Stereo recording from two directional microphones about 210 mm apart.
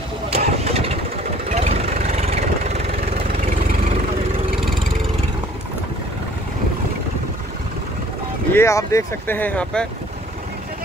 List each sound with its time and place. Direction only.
0.3 s vehicle: 30° right (ahead or behind)
8.5 s speech: 15° left (ahead or behind)